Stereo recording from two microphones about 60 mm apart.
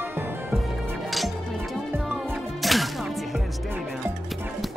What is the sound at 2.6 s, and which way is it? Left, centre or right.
Music, centre.